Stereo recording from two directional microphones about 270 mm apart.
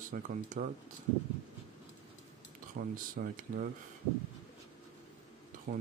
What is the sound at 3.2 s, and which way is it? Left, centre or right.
Speech, right.